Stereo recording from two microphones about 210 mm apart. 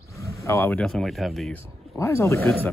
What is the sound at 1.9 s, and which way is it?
Speech, 15° left (ahead or behind).